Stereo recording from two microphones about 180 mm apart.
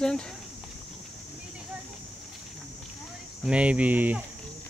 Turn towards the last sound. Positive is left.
turn(degrees=-10)  # may be behind; listen again after turning